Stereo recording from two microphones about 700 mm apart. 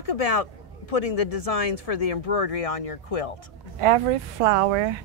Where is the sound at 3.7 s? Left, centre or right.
Right.